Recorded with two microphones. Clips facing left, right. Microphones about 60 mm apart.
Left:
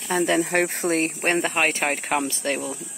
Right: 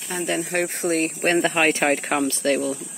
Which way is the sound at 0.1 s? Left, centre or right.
Left.